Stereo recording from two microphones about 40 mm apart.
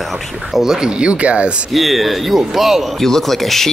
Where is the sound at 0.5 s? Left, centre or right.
Centre; by 1.6 s right.